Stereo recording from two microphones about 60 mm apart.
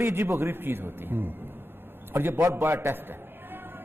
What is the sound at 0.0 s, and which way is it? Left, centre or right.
A man's voice, right.